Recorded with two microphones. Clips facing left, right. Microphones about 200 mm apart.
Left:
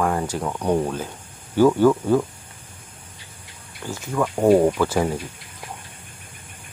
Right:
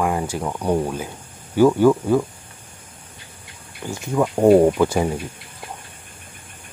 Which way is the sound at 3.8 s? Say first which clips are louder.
Right 3 dB; 20° right (ahead or behind).